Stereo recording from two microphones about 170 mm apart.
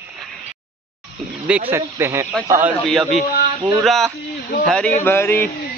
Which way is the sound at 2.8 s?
Centre (ahead or behind).